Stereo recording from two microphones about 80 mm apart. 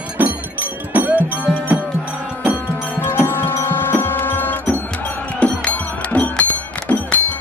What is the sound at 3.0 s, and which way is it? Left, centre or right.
Music, left.